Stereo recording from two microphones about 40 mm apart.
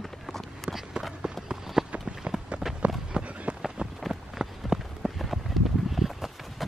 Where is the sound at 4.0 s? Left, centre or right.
Centre.